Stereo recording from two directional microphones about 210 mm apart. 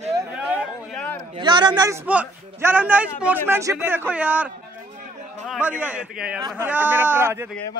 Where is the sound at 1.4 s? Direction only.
20° right (ahead or behind).